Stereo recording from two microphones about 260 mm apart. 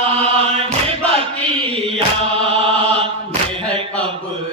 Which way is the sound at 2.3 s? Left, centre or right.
Right.